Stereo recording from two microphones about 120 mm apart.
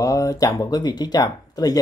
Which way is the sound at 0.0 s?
25° left (ahead or behind).